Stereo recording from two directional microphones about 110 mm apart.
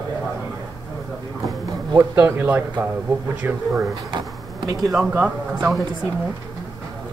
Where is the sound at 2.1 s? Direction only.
20° right (ahead or behind).